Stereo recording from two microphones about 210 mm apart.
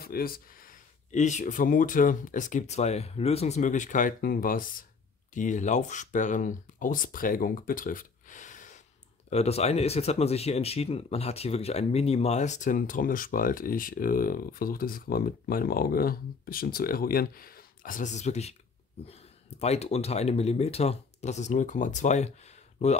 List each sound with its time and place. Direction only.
0.0 s speech: 45° left (ahead or behind)